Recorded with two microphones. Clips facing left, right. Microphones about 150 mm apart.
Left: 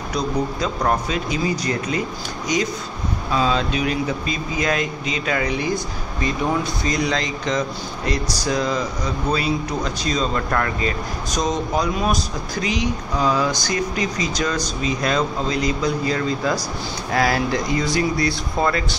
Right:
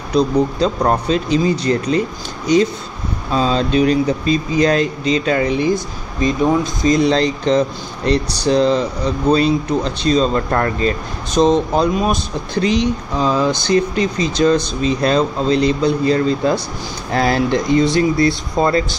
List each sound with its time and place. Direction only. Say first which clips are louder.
0.1 s speech: right 8 dB; 30° right (ahead or behind)